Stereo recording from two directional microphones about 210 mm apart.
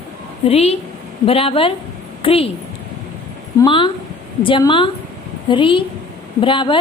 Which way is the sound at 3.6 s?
25° left (ahead or behind).